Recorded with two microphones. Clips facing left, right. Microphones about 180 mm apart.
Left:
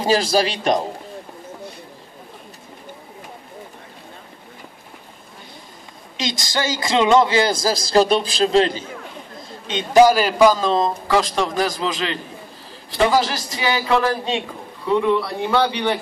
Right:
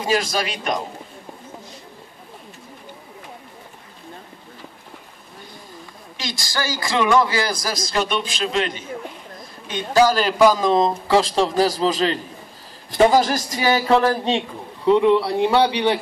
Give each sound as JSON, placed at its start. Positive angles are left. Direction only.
{"t": 0.0, "sound": "a man's voice", "side_deg": 30}
{"t": 6.1, "sound": "a man's voice", "side_deg": 20}
{"t": 9.7, "sound": "a man's voice", "side_deg": 20}
{"t": 10.1, "sound": "a man's voice", "side_deg": 5}
{"t": 10.5, "sound": "a man's voice", "side_deg": -15}
{"t": 15.0, "sound": "a man's voice", "side_deg": -15}